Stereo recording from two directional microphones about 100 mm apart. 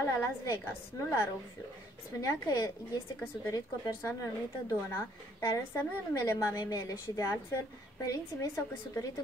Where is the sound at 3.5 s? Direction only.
25° left (ahead or behind).